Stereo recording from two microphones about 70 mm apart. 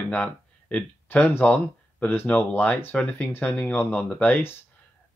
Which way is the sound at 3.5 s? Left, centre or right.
Centre.